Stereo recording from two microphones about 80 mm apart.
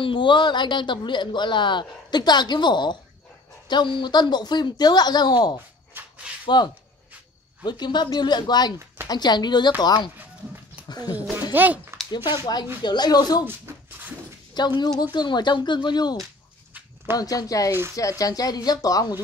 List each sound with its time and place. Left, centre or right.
0.0 s speech: left
3.6 s speech: left
5.9 s a sound: centre
6.4 s speech: left
10.1 s music: right
10.9 s speech: left
11.5 s speech: right
12.8 s speech: left
14.5 s speech: left
17.2 s speech: left